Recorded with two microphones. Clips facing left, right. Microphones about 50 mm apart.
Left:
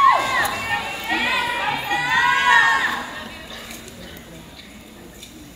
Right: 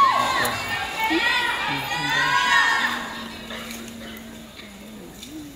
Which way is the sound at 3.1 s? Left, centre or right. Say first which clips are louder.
Left 1 dB; left.